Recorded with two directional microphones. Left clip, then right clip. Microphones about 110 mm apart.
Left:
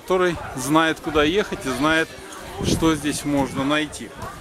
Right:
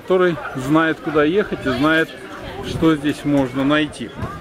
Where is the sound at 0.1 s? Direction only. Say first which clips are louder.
Right 4 dB; 10° left (ahead or behind).